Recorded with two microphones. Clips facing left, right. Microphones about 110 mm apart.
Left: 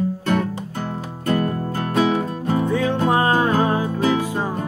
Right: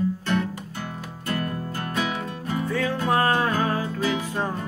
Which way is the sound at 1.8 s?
30° left (ahead or behind).